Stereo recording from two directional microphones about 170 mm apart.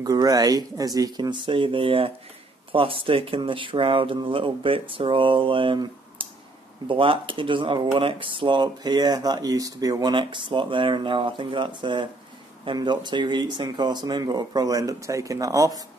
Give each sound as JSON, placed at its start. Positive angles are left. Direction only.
{"t": 0.0, "sound": "speech", "side_deg": -20}